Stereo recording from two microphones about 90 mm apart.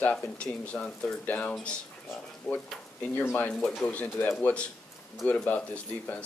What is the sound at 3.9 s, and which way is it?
Speech, 20° left (ahead or behind).